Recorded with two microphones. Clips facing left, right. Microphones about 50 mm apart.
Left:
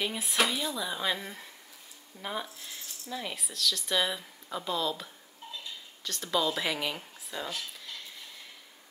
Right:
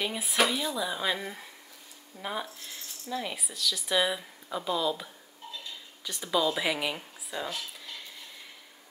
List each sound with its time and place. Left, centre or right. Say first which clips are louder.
0.0 s speech: right 2 dB; centre